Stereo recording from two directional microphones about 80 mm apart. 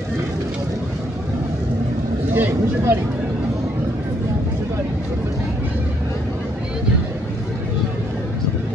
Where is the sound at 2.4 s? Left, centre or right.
Right.